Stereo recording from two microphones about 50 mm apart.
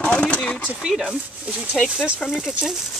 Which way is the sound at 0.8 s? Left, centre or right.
Centre.